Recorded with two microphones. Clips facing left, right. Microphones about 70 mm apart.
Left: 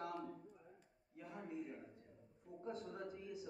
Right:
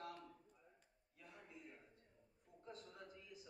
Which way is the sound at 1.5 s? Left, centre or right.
Left.